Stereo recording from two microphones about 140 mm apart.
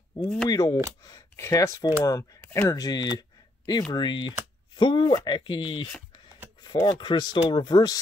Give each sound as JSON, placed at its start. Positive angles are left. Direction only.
{"t": 0.5, "sound": "speech", "side_deg": 25}
{"t": 2.4, "sound": "a sound", "side_deg": 15}
{"t": 2.7, "sound": "speech", "side_deg": 30}